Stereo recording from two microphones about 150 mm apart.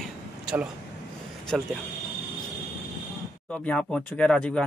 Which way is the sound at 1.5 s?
Centre (ahead or behind).